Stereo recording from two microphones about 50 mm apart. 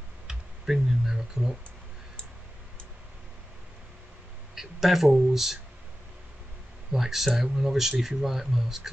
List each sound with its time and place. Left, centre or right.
0.3 s a sound: centre
4.6 s speech: centre
6.9 s speech: centre